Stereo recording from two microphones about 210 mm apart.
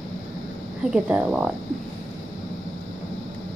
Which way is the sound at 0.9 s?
5° right (ahead or behind).